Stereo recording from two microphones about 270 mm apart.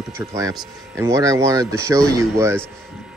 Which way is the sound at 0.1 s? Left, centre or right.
Centre.